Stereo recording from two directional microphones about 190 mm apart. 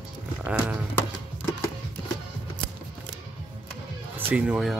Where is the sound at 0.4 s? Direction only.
5° right (ahead or behind).